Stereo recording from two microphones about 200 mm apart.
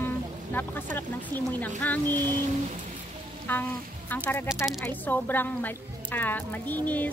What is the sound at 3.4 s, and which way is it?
Music, 10° left (ahead or behind).